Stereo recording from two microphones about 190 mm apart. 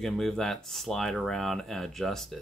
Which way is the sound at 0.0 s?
Centre (ahead or behind).